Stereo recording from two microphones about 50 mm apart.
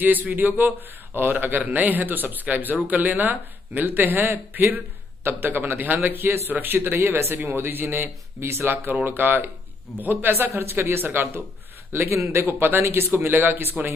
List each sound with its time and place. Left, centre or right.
0.0 s speech: right
4.3 s speech: right
5.2 s speech: right
7.4 s speech: right
9.0 s speech: right
10.5 s speech: right
12.4 s speech: right